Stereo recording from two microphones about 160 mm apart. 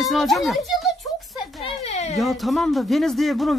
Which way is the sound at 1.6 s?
40° left (ahead or behind).